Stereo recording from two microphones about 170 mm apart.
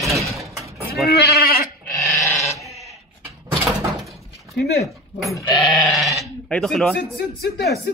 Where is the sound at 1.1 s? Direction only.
70° left (ahead or behind).